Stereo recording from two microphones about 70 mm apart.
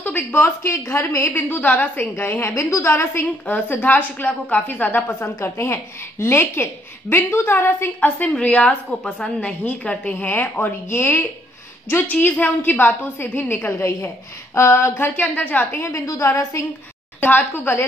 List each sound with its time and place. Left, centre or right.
0.0 s a woman's voice: left
1.5 s a woman's voice: left
2.5 s a woman's voice: left
8.4 s a woman's voice: centre; by 11.2 s left
12.1 s a woman's voice: left
15.8 s a woman's voice: left
17.2 s a woman's voice: left